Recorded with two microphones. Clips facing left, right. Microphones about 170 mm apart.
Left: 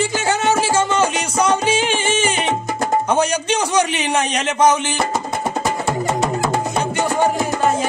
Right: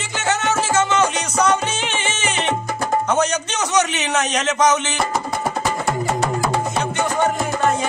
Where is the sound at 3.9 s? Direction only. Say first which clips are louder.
Left 1 dB; 10° left (ahead or behind).